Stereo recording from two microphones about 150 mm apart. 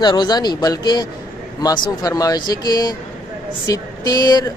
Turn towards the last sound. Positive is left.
turn(degrees=25)  # may be behind; listen again after turning